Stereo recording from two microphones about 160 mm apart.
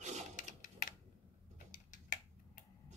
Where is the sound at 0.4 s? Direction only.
55° left (ahead or behind).